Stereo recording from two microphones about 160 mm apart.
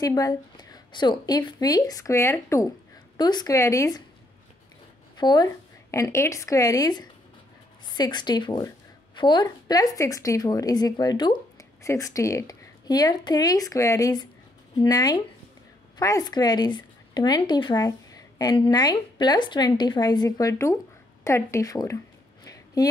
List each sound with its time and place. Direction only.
0.0 s speech: 20° left (ahead or behind)
5.1 s a woman's voice: 25° left (ahead or behind)
21.2 s a sound: 20° left (ahead or behind)